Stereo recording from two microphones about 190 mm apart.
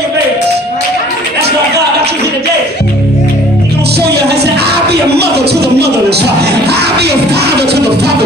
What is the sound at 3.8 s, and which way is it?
Speech, 60° right (ahead or behind).